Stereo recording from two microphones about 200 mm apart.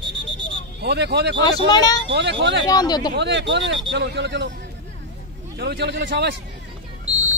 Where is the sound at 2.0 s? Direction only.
60° right (ahead or behind).